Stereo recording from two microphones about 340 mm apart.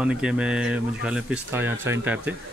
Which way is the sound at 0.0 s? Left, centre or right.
Centre.